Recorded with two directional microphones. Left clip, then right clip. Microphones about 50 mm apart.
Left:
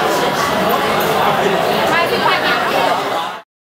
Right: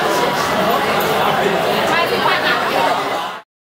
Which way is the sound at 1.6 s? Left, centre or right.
Centre.